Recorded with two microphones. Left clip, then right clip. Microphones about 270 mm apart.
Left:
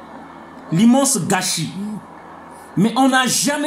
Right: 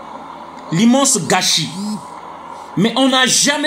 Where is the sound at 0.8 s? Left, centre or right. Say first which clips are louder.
Right 2 dB; centre.